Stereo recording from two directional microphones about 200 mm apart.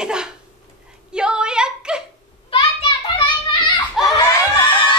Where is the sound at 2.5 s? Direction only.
25° left (ahead or behind).